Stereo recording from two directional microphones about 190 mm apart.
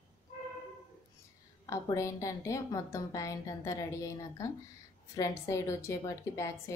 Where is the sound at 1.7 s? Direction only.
15° left (ahead or behind).